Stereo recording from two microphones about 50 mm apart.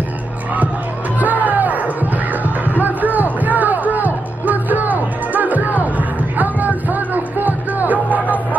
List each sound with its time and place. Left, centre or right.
1.2 s music: right